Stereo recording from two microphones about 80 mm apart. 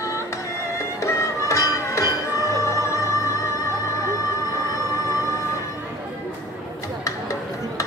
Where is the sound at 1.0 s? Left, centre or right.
Left.